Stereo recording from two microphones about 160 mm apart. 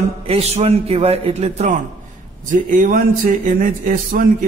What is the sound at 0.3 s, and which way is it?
A man's voice, 40° right (ahead or behind).